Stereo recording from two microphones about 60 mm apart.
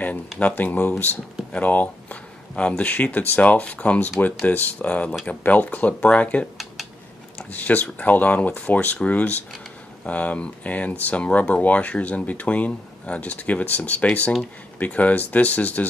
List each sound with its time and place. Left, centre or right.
0.4 s speech: left
1.5 s a sound: left
2.8 s speech: left
7.5 s speech: left